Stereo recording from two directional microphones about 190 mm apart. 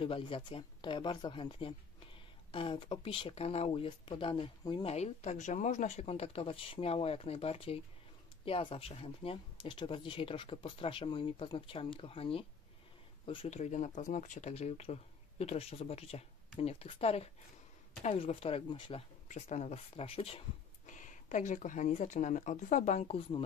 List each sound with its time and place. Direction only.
0.0 s speech: 30° left (ahead or behind)